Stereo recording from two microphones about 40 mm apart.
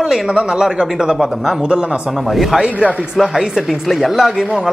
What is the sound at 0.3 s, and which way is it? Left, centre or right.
Speech, centre.